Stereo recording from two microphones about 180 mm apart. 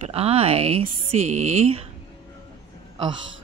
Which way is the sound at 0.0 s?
35° right (ahead or behind).